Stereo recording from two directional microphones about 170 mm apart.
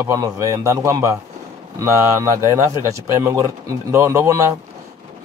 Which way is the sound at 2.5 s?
20° right (ahead or behind).